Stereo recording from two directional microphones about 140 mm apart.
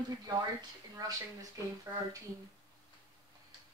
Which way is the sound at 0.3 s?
25° right (ahead or behind).